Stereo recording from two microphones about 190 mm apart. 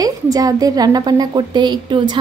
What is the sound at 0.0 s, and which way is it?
A woman's voice, 20° right (ahead or behind).